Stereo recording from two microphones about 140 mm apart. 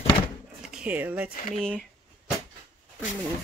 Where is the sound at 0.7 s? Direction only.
10° right (ahead or behind).